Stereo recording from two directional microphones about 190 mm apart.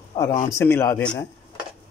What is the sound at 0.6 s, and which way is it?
Speech, 10° left (ahead or behind).